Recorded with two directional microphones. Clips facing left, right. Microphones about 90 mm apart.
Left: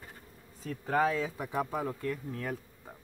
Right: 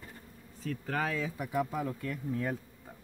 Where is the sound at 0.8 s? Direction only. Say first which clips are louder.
Left 6 dB; 25° left (ahead or behind).